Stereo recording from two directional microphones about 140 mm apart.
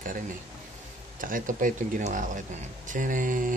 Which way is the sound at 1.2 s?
75° right (ahead or behind).